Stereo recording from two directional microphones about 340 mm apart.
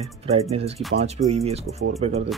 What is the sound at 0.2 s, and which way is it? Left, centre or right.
Speech, centre.